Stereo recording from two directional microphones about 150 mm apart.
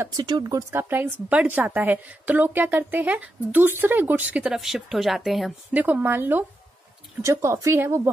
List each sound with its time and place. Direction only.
0.1 s a woman's voice: 25° right (ahead or behind)